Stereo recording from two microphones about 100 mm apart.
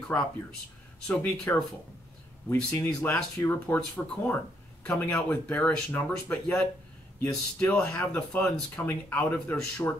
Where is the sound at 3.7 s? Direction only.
20° left (ahead or behind).